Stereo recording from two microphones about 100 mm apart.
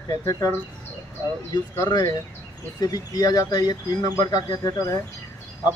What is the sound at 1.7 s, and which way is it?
Speech, 35° left (ahead or behind).